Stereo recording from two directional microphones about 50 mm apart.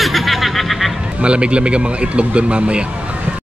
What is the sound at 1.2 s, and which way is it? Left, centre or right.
Speech, right.